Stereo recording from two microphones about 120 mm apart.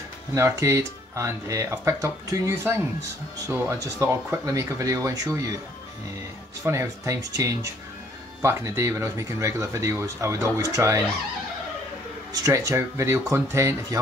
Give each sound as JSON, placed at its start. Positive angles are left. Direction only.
{"t": 0.3, "sound": "speech", "side_deg": -25}
{"t": 6.6, "sound": "speech", "side_deg": -20}
{"t": 12.3, "sound": "speech", "side_deg": -25}